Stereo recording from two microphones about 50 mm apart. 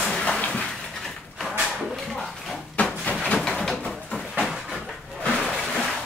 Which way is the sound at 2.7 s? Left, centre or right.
Left.